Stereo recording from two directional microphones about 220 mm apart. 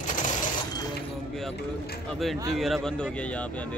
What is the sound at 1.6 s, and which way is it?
Speech, 45° left (ahead or behind).